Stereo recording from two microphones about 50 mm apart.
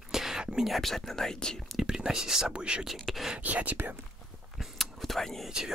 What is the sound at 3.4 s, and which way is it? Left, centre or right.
Speech, right.